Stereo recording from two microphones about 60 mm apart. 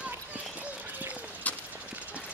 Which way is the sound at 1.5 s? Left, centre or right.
Left.